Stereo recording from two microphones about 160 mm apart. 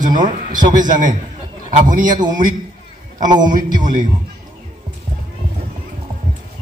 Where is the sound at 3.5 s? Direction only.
55° right (ahead or behind).